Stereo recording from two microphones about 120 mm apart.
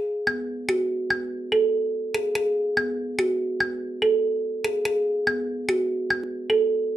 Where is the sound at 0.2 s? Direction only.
Centre (ahead or behind).